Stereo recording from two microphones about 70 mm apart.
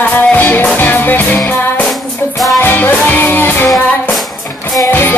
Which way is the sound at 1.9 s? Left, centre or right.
Centre.